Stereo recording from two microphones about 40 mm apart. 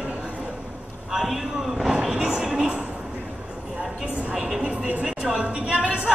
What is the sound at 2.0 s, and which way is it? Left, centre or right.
Music, centre.